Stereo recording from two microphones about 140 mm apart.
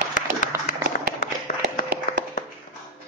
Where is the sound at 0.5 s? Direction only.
20° right (ahead or behind).